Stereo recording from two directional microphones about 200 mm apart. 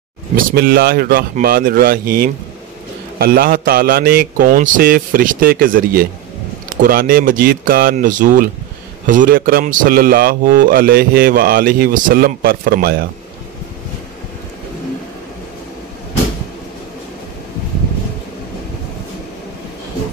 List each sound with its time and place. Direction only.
0.6 s a man's voice: 50° right (ahead or behind)